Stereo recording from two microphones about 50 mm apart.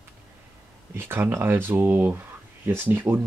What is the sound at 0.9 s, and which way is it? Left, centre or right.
Speech, right.